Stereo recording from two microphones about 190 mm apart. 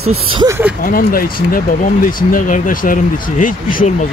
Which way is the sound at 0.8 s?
50° left (ahead or behind).